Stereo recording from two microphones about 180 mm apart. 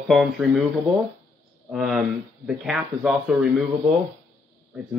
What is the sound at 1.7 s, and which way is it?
Speech, centre (ahead or behind).